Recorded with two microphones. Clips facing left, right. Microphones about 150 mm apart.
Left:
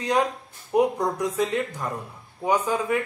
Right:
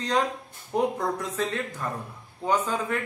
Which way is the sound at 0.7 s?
10° left (ahead or behind).